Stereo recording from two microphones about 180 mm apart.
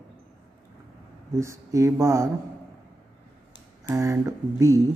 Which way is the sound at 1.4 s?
15° right (ahead or behind).